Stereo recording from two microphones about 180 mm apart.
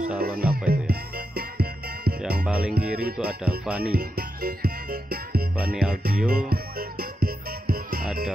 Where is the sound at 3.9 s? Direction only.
55° right (ahead or behind).